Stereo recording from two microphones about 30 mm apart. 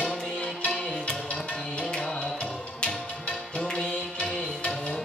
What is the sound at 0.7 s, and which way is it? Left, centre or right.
Tabla, left.